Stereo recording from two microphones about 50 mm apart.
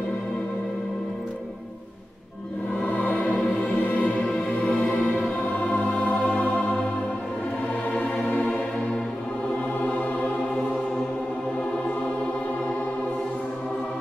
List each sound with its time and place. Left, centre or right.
3.2 s music: centre
8.3 s music: left